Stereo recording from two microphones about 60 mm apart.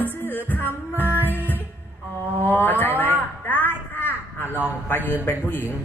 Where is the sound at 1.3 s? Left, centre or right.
Left.